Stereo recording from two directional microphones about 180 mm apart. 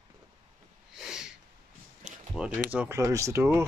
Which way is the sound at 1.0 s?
5° right (ahead or behind).